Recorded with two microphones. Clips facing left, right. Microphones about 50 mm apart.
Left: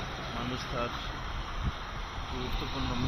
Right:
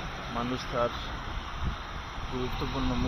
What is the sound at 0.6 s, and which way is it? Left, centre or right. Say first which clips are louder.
Speech: right 7 dB; right.